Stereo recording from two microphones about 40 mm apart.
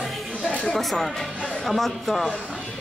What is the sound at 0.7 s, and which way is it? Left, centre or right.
Speech, centre.